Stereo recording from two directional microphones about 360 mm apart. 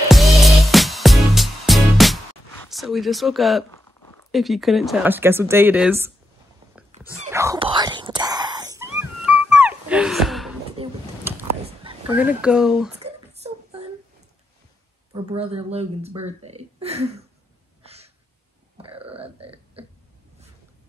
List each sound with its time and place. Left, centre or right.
0.1 s music: centre
2.7 s speech: centre
6.7 s whispering: centre
9.2 s music: centre
11.8 s speech: centre
13.0 s a sound: centre
15.1 s speech: centre
18.8 s grunt: centre